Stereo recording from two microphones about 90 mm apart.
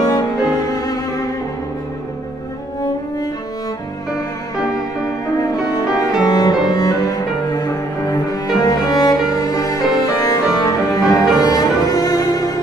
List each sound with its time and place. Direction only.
0.1 s music: 45° left (ahead or behind)
5.5 s music: 45° left (ahead or behind)
6.2 s cello: 45° left (ahead or behind)
11.4 s music: 45° left (ahead or behind)